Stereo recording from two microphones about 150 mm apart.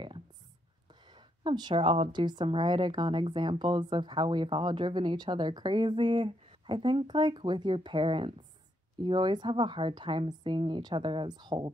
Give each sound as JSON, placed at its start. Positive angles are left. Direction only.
{"t": 1.4, "sound": "a woman's voice", "side_deg": -30}